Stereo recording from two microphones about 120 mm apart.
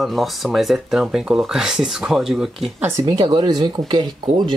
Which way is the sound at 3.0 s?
35° right (ahead or behind).